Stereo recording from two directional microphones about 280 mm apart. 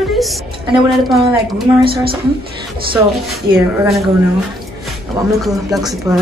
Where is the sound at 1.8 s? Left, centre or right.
Centre.